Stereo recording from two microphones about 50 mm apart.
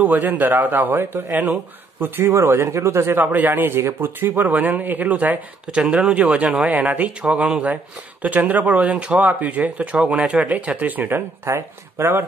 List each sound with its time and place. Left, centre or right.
0.0 s a man's voice: right
2.4 s speech: right
3.2 s a man's voice: right
3.7 s speech: right
4.3 s a man's voice: right
5.7 s a man's voice: right
11.4 s speech: right